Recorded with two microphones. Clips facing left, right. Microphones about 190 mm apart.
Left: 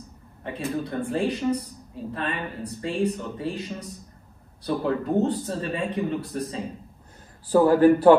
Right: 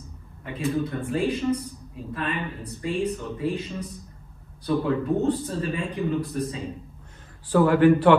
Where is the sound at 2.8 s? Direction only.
30° left (ahead or behind).